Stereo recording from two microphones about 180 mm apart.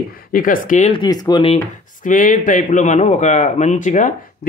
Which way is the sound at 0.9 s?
25° left (ahead or behind).